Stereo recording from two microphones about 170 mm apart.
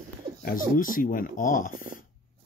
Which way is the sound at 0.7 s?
55° left (ahead or behind).